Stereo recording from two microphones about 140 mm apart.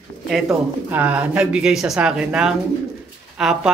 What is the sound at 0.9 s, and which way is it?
Speech, 10° right (ahead or behind).